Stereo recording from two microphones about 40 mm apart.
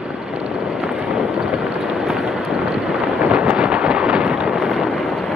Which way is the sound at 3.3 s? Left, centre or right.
Right.